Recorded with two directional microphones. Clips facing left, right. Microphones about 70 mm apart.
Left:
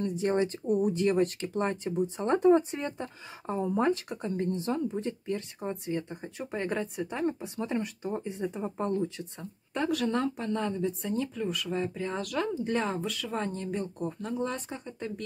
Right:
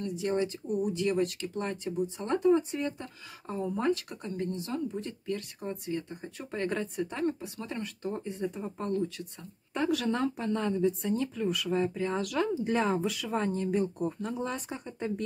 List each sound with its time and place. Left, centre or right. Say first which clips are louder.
0.0 s speech: left 3 dB; left; by 7.4 s centre
7.4 s speech: left 5 dB; left
9.8 s speech: even; centre
15.0 s speech: right 5 dB; centre